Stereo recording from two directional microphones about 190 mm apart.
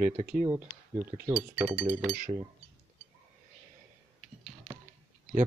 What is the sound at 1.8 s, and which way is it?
Speech, 45° right (ahead or behind).